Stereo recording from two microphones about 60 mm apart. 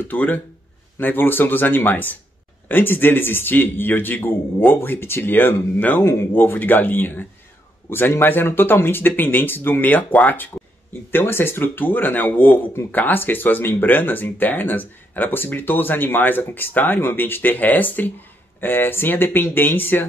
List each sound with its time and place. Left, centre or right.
0.1 s speech: left